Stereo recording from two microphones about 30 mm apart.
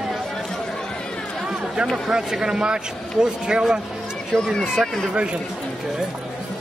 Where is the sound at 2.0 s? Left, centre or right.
Centre.